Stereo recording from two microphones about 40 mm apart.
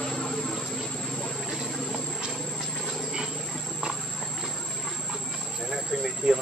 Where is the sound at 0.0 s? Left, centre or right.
Centre.